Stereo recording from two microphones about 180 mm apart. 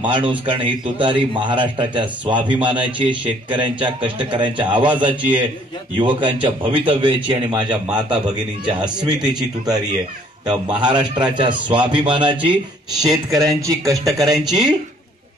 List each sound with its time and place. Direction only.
0.0 s a man's voice: 25° right (ahead or behind)